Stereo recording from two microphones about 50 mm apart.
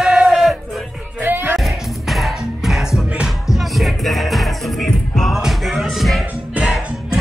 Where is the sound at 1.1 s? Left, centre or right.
Right.